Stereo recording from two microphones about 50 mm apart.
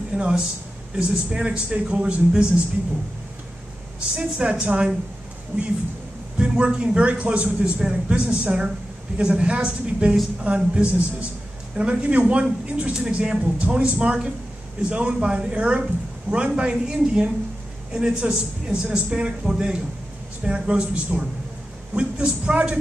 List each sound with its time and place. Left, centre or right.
0.1 s a woman's voice: centre
1.5 s speech: right
4.1 s speech: right
6.3 s a woman's voice: right